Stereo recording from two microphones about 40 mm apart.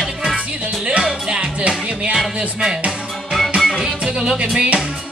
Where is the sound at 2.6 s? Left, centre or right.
Centre.